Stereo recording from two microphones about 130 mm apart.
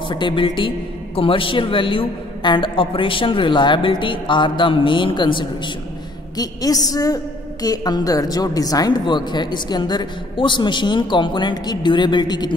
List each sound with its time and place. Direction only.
0.1 s a man's voice: 40° left (ahead or behind)